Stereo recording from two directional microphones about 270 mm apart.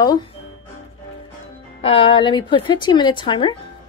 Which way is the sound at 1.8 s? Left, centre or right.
Left.